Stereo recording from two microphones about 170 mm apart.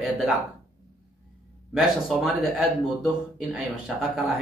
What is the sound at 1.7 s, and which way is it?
Speech, centre (ahead or behind).